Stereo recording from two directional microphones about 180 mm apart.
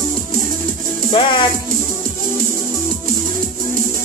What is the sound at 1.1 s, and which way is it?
Music, 25° left (ahead or behind).